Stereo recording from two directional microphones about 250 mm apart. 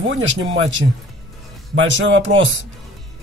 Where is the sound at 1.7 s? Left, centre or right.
Right.